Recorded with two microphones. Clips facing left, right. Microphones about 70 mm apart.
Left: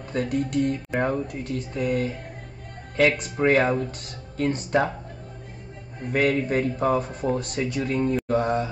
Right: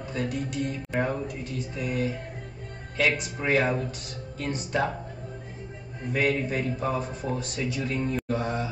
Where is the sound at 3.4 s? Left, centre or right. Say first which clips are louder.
Left 6 dB; left.